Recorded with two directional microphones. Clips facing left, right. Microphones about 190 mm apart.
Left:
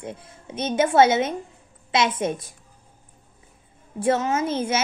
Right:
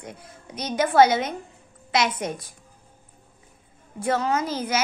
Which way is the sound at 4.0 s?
25° left (ahead or behind).